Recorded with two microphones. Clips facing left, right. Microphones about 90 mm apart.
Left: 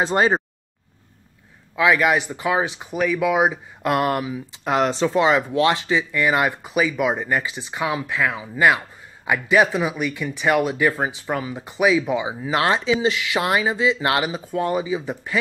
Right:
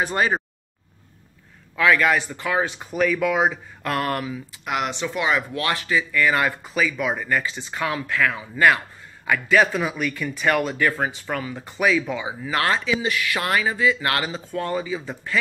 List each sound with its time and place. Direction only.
0.0 s speech: 25° left (ahead or behind)
1.8 s speech: 15° left (ahead or behind)
4.6 s speech: 35° left (ahead or behind); by 15.3 s 15° left (ahead or behind)